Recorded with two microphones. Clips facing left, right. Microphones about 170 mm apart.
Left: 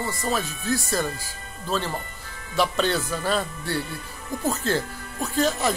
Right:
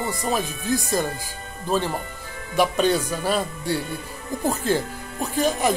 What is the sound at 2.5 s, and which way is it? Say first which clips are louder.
Speech: right 3 dB; 15° right (ahead or behind).